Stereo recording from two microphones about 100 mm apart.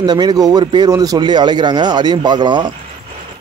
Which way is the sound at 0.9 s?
40° right (ahead or behind).